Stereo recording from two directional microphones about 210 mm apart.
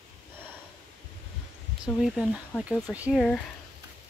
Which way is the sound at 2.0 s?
Centre (ahead or behind).